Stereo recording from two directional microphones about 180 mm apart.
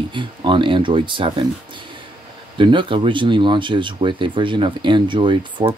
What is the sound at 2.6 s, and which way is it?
Speech, 25° right (ahead or behind).